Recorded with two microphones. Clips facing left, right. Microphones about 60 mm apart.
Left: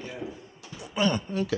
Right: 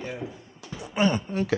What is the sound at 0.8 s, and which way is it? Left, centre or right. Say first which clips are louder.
Speech: right 2 dB; right.